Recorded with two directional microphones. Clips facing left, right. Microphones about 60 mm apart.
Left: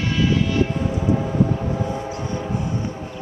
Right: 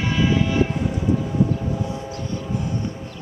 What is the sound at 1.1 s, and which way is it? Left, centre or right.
Civil defense siren, left.